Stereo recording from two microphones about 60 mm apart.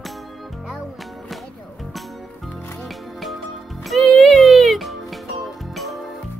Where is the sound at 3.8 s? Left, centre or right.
Centre.